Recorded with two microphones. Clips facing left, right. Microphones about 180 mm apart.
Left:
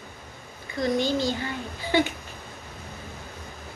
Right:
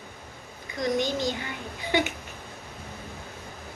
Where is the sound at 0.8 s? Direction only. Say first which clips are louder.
Left 2 dB; 20° right (ahead or behind).